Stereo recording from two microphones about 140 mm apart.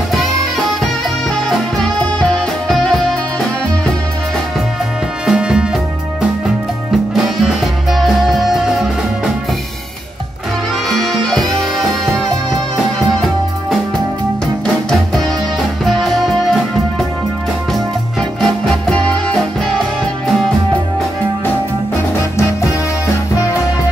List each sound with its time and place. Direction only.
0.1 s music: centre (ahead or behind)
5.2 s music: 5° right (ahead or behind)
7.2 s music: centre (ahead or behind)
10.9 s music: centre (ahead or behind)
15.8 s music: centre (ahead or behind)
18.4 s music: 5° left (ahead or behind)
22.4 s music: 20° left (ahead or behind)